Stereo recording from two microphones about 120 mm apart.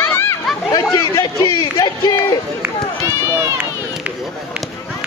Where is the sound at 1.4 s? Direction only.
40° left (ahead or behind).